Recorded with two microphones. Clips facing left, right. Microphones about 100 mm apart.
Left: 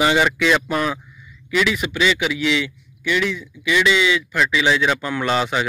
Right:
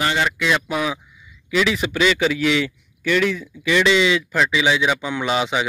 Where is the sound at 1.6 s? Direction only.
30° right (ahead or behind).